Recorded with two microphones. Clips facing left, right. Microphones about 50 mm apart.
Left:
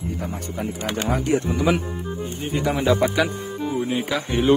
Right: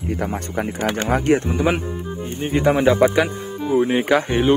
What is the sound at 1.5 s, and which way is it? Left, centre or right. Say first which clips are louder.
Speech: right 1 dB; right.